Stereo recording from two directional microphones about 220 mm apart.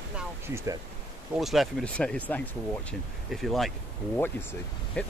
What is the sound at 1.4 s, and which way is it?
Speech, centre (ahead or behind).